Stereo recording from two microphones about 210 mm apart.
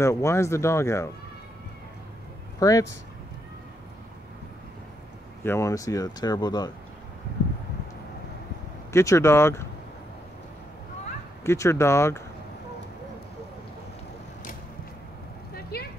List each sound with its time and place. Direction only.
0.0 s speech: 15° left (ahead or behind)
2.6 s speech: 15° left (ahead or behind)
5.4 s speech: 10° left (ahead or behind)
8.9 s speech: 15° left (ahead or behind)
11.4 s speech: 15° left (ahead or behind)
15.5 s vehicle: 50° left (ahead or behind)